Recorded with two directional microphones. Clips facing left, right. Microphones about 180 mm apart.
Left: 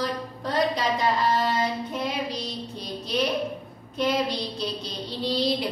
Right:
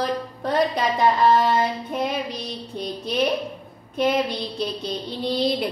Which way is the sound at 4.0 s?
55° right (ahead or behind).